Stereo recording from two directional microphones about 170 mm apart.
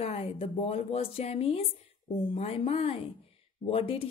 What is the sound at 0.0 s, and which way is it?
Speech, 35° left (ahead or behind).